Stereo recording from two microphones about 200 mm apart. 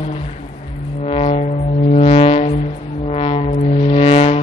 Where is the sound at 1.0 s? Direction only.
30° left (ahead or behind).